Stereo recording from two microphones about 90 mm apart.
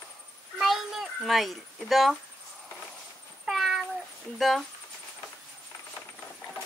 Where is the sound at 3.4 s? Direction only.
5° right (ahead or behind).